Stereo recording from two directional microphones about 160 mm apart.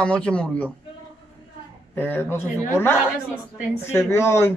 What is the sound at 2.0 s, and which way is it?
A man's voice, 15° left (ahead or behind).